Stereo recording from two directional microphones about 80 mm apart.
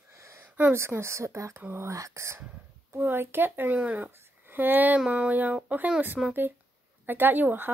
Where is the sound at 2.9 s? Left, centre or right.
Right.